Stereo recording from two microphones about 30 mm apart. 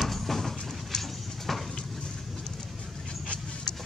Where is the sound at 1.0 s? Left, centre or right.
Centre.